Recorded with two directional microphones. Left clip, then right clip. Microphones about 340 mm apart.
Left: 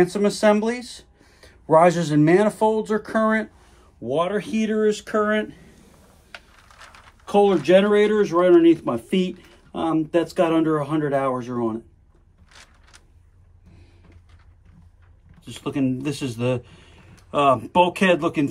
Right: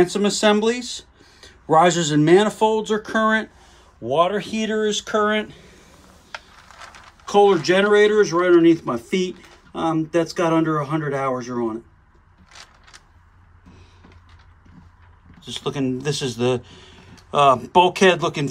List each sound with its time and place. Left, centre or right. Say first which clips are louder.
0.0 s speech: right 1 dB; centre
6.8 s a sound: right 4 dB; centre
7.2 s speech: right 2 dB; centre
15.6 s speech: right 1 dB; centre